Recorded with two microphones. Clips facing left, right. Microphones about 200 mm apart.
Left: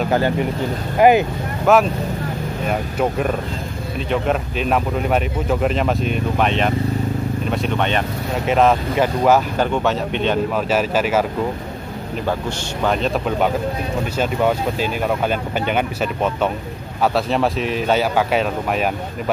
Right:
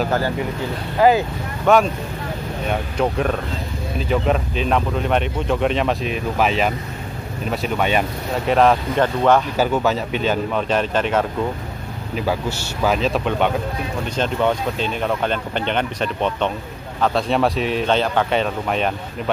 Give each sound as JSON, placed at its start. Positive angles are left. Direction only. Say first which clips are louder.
{"t": 1.0, "sound": "speech", "louder": "left 2 dB", "side_deg": 15}
{"t": 1.7, "sound": "speech", "louder": "left 1 dB", "side_deg": 0}
{"t": 12.3, "sound": "speech", "louder": "even", "side_deg": -5}